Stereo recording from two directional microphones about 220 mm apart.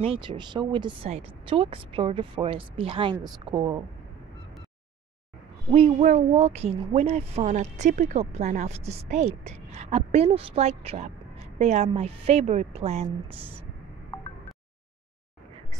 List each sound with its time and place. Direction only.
0.0 s speech: 25° right (ahead or behind)
5.7 s speech: 25° right (ahead or behind)